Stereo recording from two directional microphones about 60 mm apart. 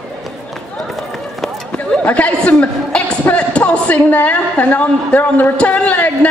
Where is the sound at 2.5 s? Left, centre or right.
Left.